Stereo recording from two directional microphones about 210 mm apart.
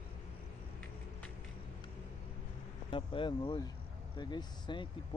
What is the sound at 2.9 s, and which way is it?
Speech, 25° left (ahead or behind).